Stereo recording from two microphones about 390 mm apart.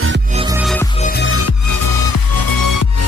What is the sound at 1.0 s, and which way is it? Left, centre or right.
Music, left.